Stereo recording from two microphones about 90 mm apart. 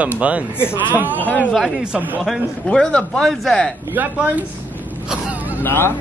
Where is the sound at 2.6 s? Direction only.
10° left (ahead or behind).